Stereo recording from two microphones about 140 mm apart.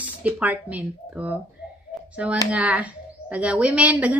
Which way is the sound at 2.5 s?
10° right (ahead or behind).